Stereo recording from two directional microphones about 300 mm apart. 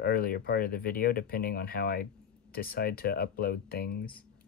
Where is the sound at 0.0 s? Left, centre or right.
Left.